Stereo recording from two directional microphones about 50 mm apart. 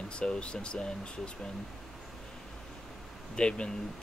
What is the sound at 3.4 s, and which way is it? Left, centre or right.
Speech, centre.